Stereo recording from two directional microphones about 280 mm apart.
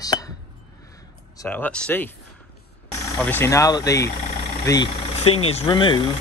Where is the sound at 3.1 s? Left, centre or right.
Centre.